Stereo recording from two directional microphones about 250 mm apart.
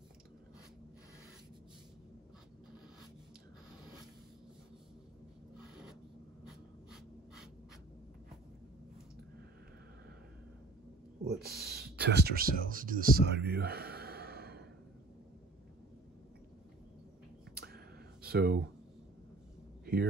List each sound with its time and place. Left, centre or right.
11.2 s speech: right
17.6 s clicking: right